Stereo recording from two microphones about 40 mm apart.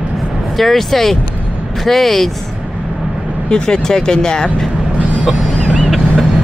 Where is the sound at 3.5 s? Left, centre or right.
Centre.